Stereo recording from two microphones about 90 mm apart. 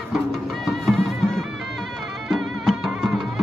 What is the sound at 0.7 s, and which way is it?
Music, centre (ahead or behind).